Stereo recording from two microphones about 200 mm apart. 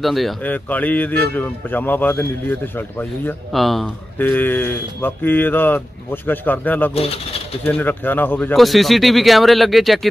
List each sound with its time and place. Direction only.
0.0 s a man's voice: centre (ahead or behind)
7.0 s speech: 30° left (ahead or behind)
7.6 s speech: 10° left (ahead or behind)